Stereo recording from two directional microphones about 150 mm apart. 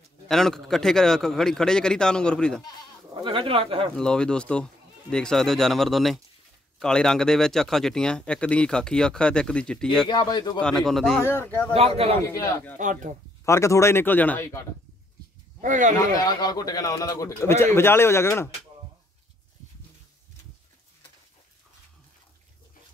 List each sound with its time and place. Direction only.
0.3 s speech: 5° left (ahead or behind)
3.3 s speech: 35° right (ahead or behind)
3.9 s speech: 5° left (ahead or behind)
10.0 s a man's voice: 30° left (ahead or behind)
10.6 s speech: centre (ahead or behind)
11.2 s speech: 15° left (ahead or behind)
11.7 s speech: 40° right (ahead or behind)
12.2 s a man's voice: 20° left (ahead or behind)
12.7 s speech: 55° right (ahead or behind)
13.5 s speech: 20° left (ahead or behind)
15.6 s speech: 60° right (ahead or behind)
16.3 s a man's voice: 25° left (ahead or behind)